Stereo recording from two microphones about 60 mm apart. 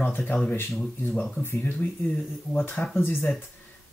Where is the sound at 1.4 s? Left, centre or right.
Left.